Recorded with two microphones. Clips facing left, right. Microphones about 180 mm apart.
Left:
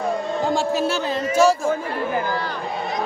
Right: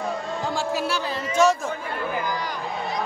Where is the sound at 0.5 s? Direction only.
25° left (ahead or behind).